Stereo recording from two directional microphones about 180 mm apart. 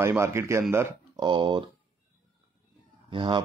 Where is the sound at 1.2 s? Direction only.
25° right (ahead or behind).